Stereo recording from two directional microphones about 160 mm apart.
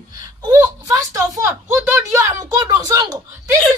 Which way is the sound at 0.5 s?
20° right (ahead or behind).